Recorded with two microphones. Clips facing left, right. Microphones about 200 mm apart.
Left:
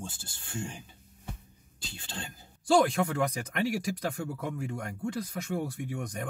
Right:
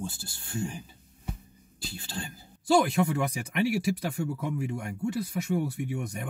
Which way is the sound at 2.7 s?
10° right (ahead or behind).